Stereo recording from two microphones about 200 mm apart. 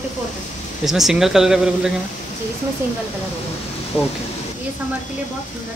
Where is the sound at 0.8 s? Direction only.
Centre (ahead or behind).